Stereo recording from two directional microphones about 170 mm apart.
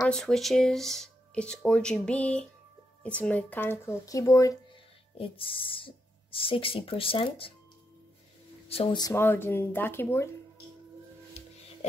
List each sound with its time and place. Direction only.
0.0 s speech: centre (ahead or behind); by 4.6 s 20° left (ahead or behind)
5.1 s speech: 30° left (ahead or behind)
8.6 s speech: 30° left (ahead or behind)
9.1 s speech: 15° left (ahead or behind)
11.4 s music: 40° left (ahead or behind)